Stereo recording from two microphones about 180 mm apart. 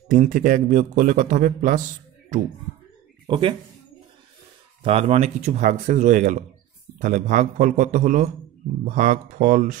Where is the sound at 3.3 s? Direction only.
30° right (ahead or behind).